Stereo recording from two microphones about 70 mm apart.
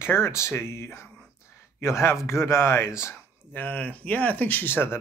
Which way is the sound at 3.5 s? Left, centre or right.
Left.